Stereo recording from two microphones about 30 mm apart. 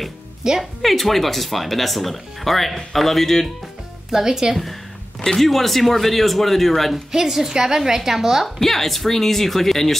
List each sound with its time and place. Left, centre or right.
0.4 s speech: centre
0.8 s speech: centre
4.1 s a woman's voice: centre
5.4 s speech: centre
7.1 s a woman's voice: centre
8.5 s speech: centre